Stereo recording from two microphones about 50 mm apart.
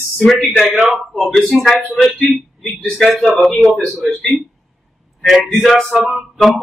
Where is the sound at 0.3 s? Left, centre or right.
Centre.